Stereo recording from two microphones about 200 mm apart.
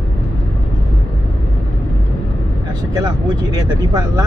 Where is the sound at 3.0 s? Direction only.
20° right (ahead or behind).